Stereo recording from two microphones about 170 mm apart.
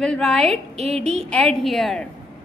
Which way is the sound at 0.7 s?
35° right (ahead or behind).